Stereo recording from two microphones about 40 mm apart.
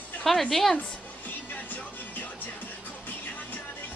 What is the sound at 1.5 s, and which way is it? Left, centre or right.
Music, left.